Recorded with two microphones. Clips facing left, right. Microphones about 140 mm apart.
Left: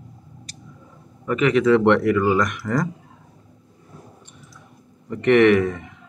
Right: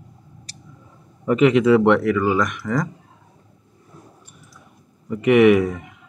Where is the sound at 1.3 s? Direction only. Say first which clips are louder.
Right 3 dB; 20° right (ahead or behind).